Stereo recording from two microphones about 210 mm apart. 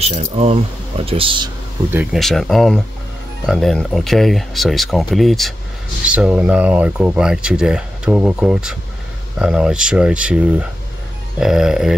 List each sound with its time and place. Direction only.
0.0 s speech: 30° right (ahead or behind)
2.1 s speech: centre (ahead or behind)